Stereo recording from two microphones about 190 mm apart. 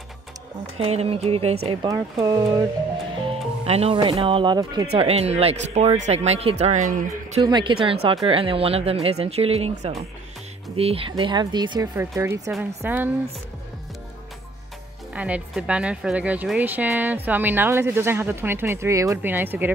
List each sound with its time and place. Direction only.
0.7 s speech: 30° right (ahead or behind)
3.6 s speech: 30° right (ahead or behind)
4.9 s speech: 35° right (ahead or behind)
7.4 s speech: 25° right (ahead or behind)
15.1 s speech: 5° right (ahead or behind)